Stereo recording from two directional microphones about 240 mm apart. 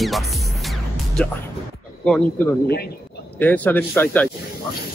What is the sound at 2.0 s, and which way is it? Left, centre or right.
A man's voice, centre.